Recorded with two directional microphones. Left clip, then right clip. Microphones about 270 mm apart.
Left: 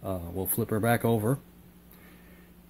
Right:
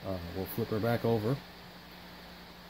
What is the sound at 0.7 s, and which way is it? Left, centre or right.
Speech, left.